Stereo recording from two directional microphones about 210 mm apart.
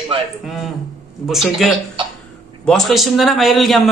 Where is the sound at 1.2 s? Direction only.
Centre (ahead or behind).